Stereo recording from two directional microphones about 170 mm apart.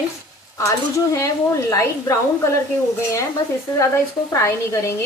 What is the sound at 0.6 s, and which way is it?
Speech, 15° left (ahead or behind).